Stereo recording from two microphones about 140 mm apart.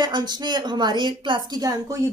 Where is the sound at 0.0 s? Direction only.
30° right (ahead or behind).